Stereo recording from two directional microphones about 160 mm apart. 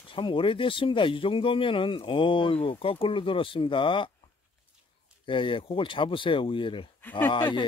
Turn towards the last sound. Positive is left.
turn(degrees=30)  # may be behind; listen again after turning